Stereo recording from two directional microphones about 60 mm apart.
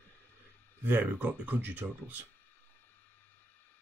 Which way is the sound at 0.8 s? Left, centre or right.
Right.